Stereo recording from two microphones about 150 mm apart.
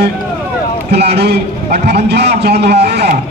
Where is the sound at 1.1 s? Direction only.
90° right.